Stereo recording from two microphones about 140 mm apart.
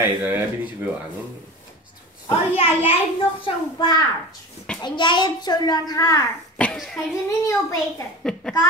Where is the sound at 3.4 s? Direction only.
30° left (ahead or behind).